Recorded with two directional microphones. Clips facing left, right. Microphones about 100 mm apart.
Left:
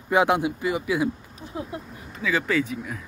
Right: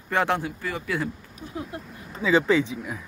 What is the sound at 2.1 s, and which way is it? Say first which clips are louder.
Speech: right 4 dB; 25° right (ahead or behind).